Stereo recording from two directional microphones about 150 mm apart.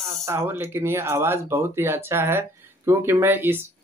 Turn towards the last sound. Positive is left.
turn(degrees=-15)  # may be behind; listen again after turning